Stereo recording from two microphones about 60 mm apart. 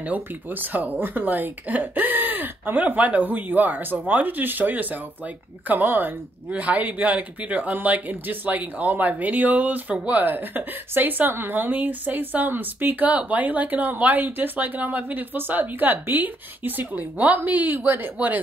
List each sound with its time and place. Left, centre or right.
0.0 s speech: right